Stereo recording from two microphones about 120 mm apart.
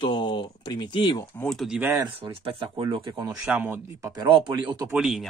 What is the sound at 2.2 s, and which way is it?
Speech, 50° right (ahead or behind).